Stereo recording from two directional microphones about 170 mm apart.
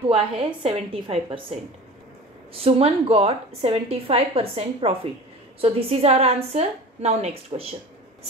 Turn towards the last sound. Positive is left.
turn(degrees=-40)  # may be behind; listen again after turning